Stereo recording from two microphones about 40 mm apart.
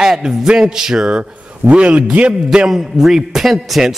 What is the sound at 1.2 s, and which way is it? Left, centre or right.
A man's voice, right.